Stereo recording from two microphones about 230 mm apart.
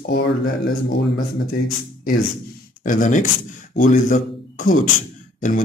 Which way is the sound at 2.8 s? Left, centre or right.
Left.